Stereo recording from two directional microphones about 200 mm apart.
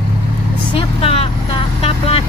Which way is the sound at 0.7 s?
25° left (ahead or behind).